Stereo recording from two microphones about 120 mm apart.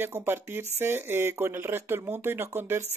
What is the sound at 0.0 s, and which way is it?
Speech, 20° right (ahead or behind).